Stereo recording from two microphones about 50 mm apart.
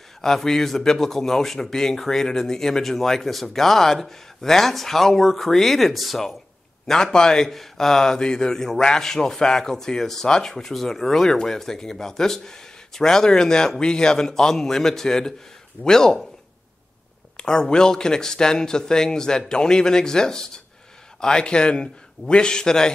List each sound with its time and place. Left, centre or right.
0.2 s speech: centre
6.9 s speech: centre
17.4 s speech: centre